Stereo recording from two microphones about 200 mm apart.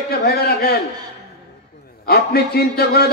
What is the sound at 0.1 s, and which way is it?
Speech, 50° left (ahead or behind).